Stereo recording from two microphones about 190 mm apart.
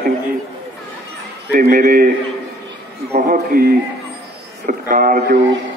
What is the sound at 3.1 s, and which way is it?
A man's voice, 45° right (ahead or behind).